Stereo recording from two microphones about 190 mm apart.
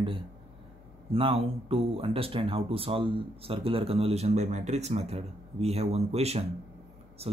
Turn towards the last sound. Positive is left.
turn(degrees=-30)  # may be behind; listen again after turning